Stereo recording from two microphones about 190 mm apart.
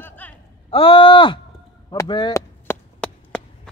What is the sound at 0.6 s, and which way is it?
Speech, 30° left (ahead or behind).